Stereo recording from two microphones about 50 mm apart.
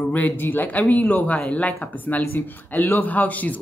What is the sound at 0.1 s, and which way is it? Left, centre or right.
A woman's voice, left.